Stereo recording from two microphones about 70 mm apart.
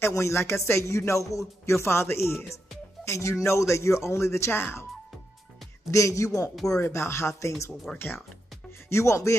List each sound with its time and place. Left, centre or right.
0.0 s speech: left
5.9 s speech: left
8.8 s speech: left